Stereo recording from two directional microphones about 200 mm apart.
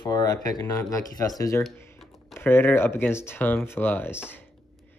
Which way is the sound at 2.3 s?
10° left (ahead or behind).